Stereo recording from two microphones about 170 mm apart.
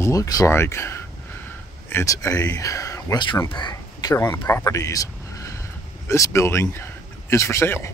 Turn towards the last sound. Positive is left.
turn(degrees=15)  # may be behind; listen again after turning